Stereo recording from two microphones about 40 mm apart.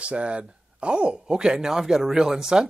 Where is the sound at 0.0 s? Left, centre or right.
Right.